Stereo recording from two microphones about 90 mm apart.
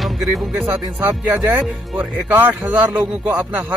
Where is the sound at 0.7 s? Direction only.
25° right (ahead or behind).